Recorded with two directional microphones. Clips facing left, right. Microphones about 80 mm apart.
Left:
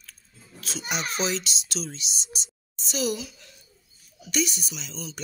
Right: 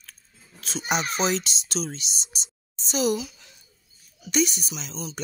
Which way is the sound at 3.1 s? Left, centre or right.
Centre.